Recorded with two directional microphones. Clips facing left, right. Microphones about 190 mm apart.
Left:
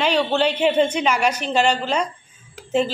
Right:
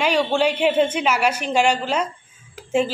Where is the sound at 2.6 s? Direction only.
10° right (ahead or behind).